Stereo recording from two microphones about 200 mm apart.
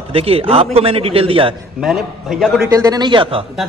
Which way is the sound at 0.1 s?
30° right (ahead or behind).